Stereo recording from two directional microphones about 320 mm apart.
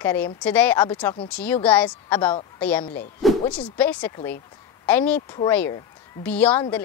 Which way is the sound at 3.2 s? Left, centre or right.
Centre.